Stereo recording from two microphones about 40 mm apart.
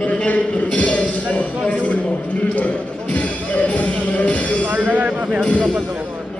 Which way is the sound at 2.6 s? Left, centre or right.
Left.